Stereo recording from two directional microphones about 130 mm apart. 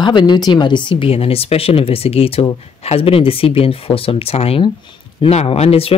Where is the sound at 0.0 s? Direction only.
35° left (ahead or behind).